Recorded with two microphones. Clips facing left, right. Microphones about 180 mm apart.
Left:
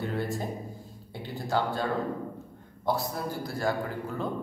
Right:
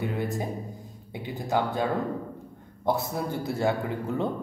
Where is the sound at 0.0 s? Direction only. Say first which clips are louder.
Right 2 dB; 20° right (ahead or behind).